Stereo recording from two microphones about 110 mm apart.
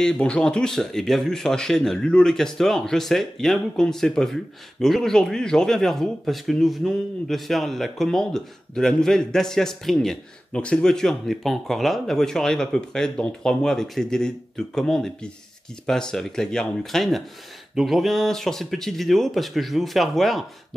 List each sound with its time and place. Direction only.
0.0 s speech: 10° left (ahead or behind)